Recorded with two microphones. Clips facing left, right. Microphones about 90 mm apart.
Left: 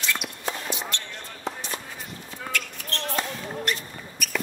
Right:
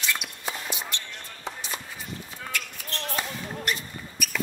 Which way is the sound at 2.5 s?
10° right (ahead or behind).